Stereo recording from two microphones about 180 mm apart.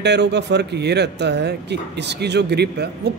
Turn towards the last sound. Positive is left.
turn(degrees=-65)  # may be behind; listen again after turning